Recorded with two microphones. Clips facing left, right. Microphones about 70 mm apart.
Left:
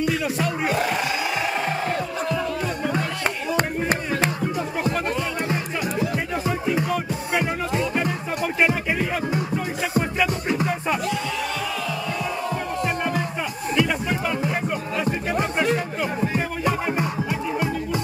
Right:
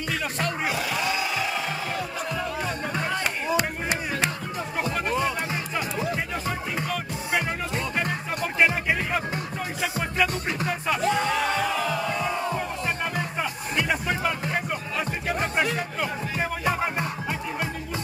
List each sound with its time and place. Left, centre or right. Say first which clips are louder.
0.0 s music: left 5 dB; centre
3.5 s a sound: left 5 dB; left
6.7 s music: left 6 dB; centre
9.9 s music: left 4 dB; centre
11.1 s music: right 3 dB; right
13.7 s music: left 3 dB; centre
16.9 s music: left 4 dB; centre